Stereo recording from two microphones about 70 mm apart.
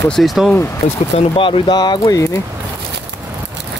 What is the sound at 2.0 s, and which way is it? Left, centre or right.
Speech, left.